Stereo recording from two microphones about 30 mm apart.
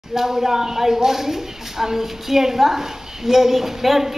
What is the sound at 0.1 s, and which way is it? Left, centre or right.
Speech, centre.